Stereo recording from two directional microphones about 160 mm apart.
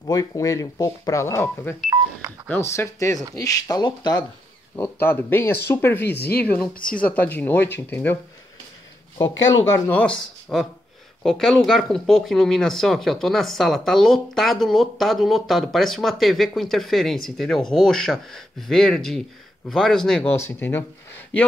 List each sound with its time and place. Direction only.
0.0 s speech: 20° left (ahead or behind)
4.7 s speech: 10° left (ahead or behind)
6.1 s speech: 80° left
6.4 s speech: 10° left (ahead or behind)
6.8 s speech: 60° left (ahead or behind)
7.1 s speech: 10° left (ahead or behind)
9.8 s speech: 10° left (ahead or behind)